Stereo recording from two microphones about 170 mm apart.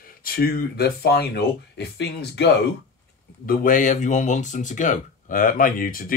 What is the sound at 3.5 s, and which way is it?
Speech, 55° left (ahead or behind).